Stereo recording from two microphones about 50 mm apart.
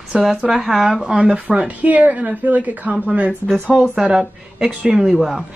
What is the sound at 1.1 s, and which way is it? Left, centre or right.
A woman's voice, centre.